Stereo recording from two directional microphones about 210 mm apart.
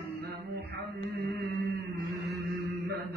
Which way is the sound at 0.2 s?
50° right (ahead or behind).